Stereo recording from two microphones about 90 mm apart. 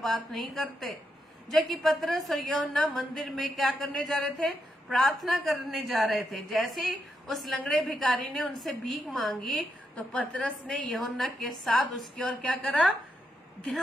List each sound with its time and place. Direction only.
0.0 s a woman's voice: centre (ahead or behind)